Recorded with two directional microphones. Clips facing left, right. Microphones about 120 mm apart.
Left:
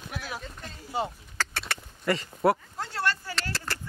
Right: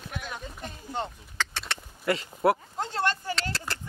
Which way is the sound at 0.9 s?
5° left (ahead or behind).